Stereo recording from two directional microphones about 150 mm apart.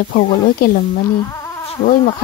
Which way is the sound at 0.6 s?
90° left.